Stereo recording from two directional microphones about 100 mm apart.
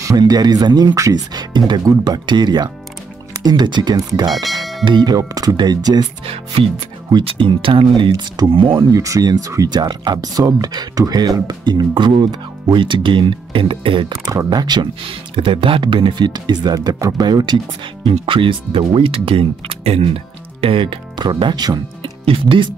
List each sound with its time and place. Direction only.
0.2 s speech: 45° right (ahead or behind)
3.9 s speech: 35° right (ahead or behind)
4.3 s speech: centre (ahead or behind)
4.8 s speech: 45° right (ahead or behind)
6.2 s speech: 70° right (ahead or behind)
8.9 s speech: 35° right (ahead or behind); by 14.1 s 60° right (ahead or behind)
14.2 s speech: 35° right (ahead or behind)
15.3 s speech: 60° right (ahead or behind); by 17.6 s 45° right (ahead or behind)
18.0 s speech: 60° right (ahead or behind); by 20.1 s 75° right (ahead or behind)
20.6 s speech: 65° right (ahead or behind); by 21.8 s 45° right (ahead or behind)
22.2 s speech: 65° right (ahead or behind)